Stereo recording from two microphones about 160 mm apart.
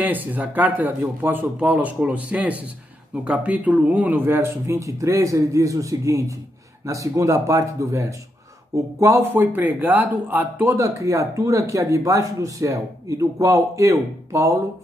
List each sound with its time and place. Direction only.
0.0 s speech: 10° right (ahead or behind)